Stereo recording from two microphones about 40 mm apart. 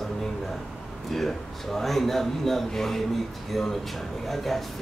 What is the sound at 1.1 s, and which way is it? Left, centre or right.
A man's voice, centre.